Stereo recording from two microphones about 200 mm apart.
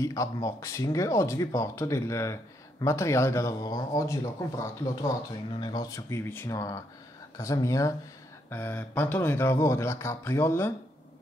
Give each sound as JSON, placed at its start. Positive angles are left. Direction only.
{"t": 0.0, "sound": "speech", "side_deg": 15}